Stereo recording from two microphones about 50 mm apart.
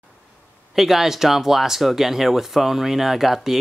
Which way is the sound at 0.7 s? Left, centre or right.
Centre.